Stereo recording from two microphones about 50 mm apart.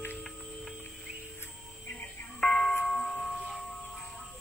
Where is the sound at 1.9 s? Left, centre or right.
Left.